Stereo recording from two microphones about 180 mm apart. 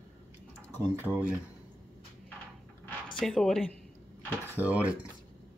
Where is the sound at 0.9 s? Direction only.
10° right (ahead or behind).